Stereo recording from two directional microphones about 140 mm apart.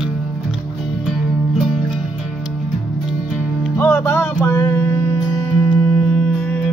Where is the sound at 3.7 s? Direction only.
20° left (ahead or behind).